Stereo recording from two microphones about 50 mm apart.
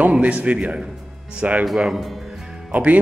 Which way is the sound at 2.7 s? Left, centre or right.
Right.